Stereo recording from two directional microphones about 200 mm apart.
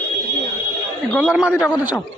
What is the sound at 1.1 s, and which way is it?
Speech, 5° right (ahead or behind).